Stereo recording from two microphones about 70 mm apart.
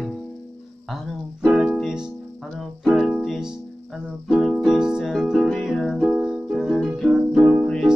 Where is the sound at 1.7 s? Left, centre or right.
Centre.